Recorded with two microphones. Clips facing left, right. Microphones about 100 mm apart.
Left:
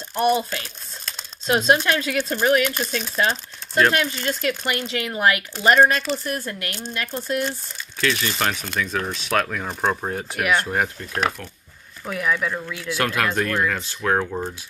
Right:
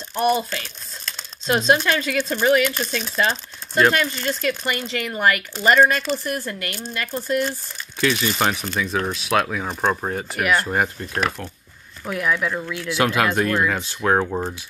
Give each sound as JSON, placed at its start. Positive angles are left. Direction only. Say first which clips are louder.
{"t": 0.2, "sound": "speech", "louder": "even", "side_deg": 0}
{"t": 8.0, "sound": "speech", "louder": "right 2 dB", "side_deg": -20}